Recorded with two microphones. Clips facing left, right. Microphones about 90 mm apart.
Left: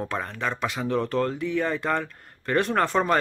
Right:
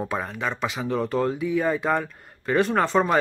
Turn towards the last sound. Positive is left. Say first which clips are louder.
# right 1 dB
turn(degrees=0)  # may be behind; listen again after turning